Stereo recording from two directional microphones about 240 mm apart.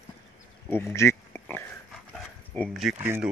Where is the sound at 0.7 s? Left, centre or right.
Centre.